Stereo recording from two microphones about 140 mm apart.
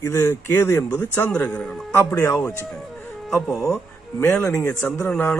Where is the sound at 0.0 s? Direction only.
20° left (ahead or behind).